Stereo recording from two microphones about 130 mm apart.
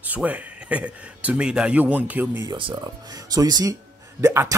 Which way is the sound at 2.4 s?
35° right (ahead or behind).